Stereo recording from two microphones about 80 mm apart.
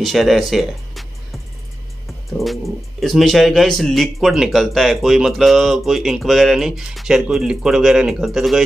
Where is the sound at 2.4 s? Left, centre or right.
Centre.